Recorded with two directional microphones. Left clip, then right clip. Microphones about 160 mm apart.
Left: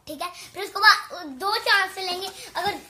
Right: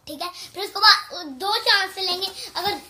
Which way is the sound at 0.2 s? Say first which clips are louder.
Right 2 dB; centre (ahead or behind).